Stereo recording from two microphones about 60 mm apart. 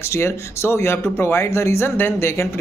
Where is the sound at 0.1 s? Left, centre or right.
Left.